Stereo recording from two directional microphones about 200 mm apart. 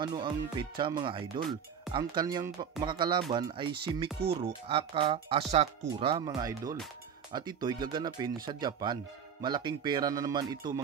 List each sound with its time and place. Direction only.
0.0 s speech: 20° right (ahead or behind)